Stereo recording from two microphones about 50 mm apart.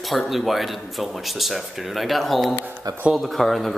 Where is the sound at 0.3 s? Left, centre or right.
Centre.